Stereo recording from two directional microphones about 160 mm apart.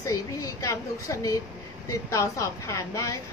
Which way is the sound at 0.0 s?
20° left (ahead or behind).